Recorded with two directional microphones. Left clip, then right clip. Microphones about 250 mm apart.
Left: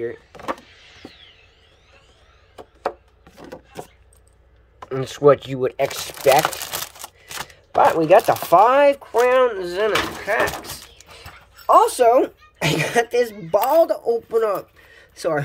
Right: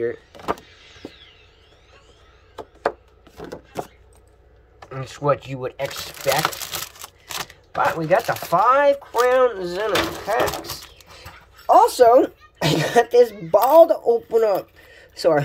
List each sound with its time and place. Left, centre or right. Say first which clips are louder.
0.0 s power windows: right 2 dB; centre
3.4 s vehicle: right 5 dB; centre
4.8 s speech: left 7 dB; left
7.7 s speech: left 5 dB; left
11.1 s a sound: left 2 dB; centre
11.9 s speech: right 2 dB; centre